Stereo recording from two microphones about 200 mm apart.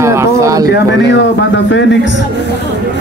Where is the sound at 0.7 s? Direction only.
65° left (ahead or behind).